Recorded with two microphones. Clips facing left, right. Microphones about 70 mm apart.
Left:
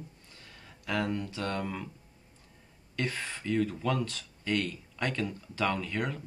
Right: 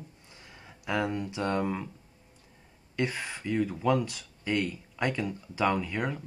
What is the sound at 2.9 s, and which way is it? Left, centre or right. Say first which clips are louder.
Speech: right 3 dB; centre.